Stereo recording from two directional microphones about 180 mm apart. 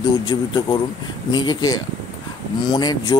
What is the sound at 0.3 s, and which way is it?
Speech, 25° left (ahead or behind).